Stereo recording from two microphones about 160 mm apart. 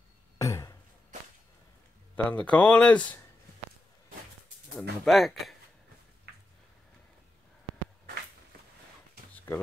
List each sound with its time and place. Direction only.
0.4 s a sound: 20° left (ahead or behind)
2.1 s speech: 10° left (ahead or behind)
5.0 s speech: centre (ahead or behind)